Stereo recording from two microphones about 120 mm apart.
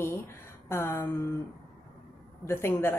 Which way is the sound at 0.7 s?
20° left (ahead or behind).